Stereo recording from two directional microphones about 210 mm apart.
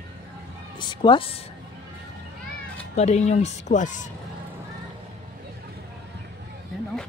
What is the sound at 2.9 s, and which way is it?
Speech, 30° left (ahead or behind).